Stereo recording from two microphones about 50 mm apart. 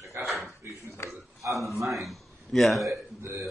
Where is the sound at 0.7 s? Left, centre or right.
Left.